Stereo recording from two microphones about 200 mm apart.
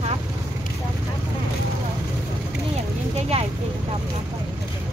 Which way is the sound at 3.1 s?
30° right (ahead or behind).